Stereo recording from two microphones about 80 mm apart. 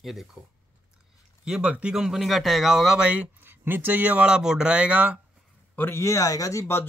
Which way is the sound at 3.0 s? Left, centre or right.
Centre.